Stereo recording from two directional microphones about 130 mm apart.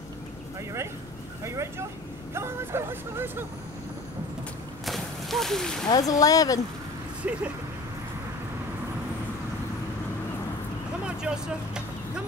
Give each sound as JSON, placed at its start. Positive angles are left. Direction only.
{"t": 1.4, "sound": "speech", "side_deg": -20}
{"t": 4.8, "sound": "boat", "side_deg": 0}
{"t": 5.9, "sound": "speech", "side_deg": 25}
{"t": 7.2, "sound": "speech", "side_deg": -10}
{"t": 11.2, "sound": "speech", "side_deg": -5}